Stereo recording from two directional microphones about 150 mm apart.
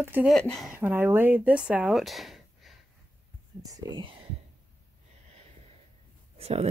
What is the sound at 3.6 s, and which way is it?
Speech, 25° right (ahead or behind).